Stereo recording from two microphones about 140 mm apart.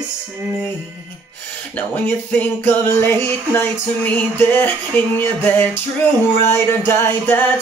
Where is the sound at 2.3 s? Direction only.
15° left (ahead or behind).